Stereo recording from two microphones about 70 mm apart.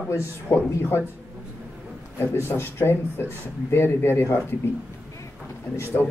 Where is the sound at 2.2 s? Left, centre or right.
Left.